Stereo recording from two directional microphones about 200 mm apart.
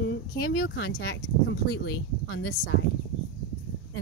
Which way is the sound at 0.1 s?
70° left (ahead or behind).